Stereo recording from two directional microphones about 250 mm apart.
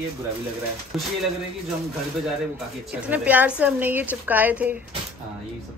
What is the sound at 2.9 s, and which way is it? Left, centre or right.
A woman's voice, centre.